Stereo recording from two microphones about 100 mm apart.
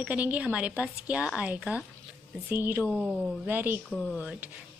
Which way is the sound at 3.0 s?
10° right (ahead or behind).